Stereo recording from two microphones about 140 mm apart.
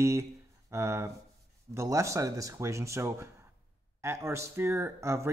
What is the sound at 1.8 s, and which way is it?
Speech, 20° right (ahead or behind).